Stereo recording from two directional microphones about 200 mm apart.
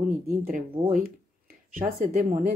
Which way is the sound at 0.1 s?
40° right (ahead or behind).